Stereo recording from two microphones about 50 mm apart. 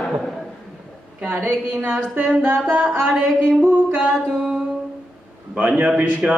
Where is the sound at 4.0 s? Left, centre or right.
Centre.